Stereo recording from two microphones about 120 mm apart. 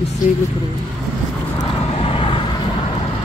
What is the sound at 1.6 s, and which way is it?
Vehicle, 45° left (ahead or behind).